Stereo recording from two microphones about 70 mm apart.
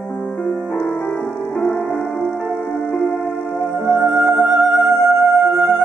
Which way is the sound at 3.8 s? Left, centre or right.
Centre.